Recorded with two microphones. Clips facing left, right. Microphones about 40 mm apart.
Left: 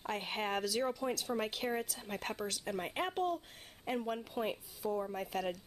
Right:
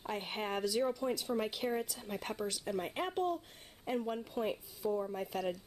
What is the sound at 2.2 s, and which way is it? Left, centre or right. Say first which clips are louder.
Speech: even; left.